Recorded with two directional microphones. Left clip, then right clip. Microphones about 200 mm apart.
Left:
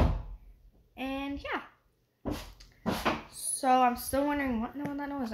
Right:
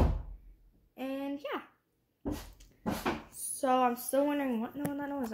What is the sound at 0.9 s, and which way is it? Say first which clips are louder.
Speech: left 2 dB; centre (ahead or behind).